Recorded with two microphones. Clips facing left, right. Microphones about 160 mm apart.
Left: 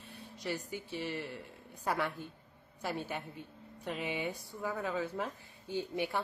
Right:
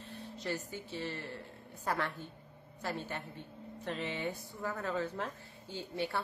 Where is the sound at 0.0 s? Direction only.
15° left (ahead or behind).